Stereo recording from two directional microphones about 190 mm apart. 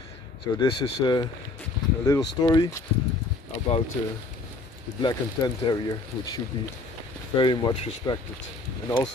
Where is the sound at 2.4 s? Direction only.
20° left (ahead or behind).